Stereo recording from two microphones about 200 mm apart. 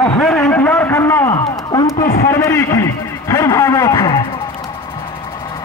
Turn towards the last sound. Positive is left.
turn(degrees=20)  # may be behind; listen again after turning